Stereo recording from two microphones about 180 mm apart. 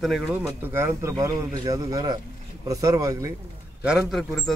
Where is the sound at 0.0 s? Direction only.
5° right (ahead or behind).